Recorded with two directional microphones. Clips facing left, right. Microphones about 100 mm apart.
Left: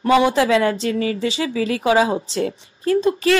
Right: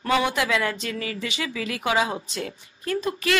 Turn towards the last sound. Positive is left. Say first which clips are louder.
# left 9 dB
turn(degrees=30)  # may be behind; listen again after turning